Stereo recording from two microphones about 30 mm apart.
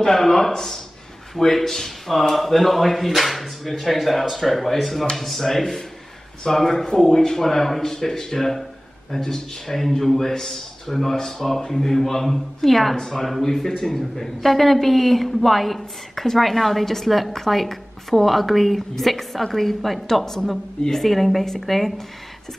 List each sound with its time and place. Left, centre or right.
0.0 s speech: centre
12.9 s speech: centre